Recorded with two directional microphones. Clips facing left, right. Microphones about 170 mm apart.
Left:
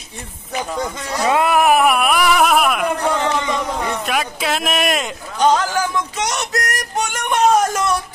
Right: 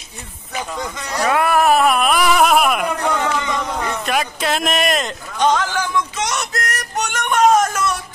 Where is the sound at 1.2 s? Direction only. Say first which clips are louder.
Left 1 dB; 20° left (ahead or behind); by 5.6 s 5° left (ahead or behind).